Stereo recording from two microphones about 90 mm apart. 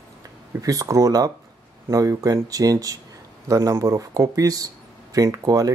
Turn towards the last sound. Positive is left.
turn(degrees=-40)  # may be behind; listen again after turning